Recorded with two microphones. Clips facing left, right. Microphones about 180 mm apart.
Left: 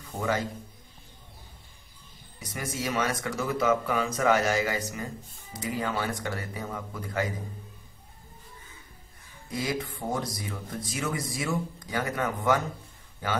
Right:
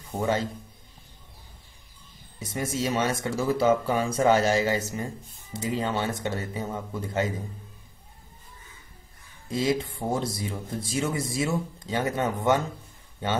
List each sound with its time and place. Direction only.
0.2 s speech: 25° right (ahead or behind)
2.3 s speech: 25° right (ahead or behind)
9.5 s speech: 25° right (ahead or behind)